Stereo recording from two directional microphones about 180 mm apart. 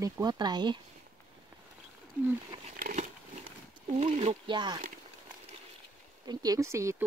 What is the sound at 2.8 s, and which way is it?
Crumpling, 50° right (ahead or behind).